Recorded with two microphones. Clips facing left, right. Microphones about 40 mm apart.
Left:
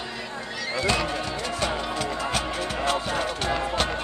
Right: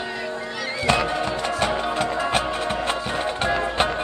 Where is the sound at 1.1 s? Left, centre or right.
Right.